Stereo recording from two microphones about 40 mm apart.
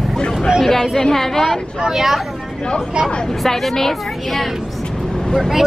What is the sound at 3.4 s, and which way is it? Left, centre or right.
Speech, centre.